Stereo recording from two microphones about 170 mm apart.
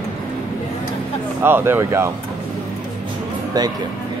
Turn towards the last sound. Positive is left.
turn(degrees=-25)  # may be behind; listen again after turning